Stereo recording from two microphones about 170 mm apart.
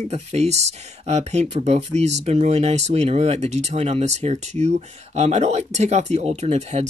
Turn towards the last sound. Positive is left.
turn(degrees=-40)  # may be behind; listen again after turning